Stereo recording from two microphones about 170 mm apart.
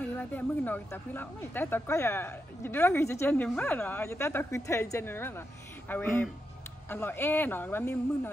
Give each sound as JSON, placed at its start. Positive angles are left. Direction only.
{"t": 0.0, "sound": "speech", "side_deg": 10}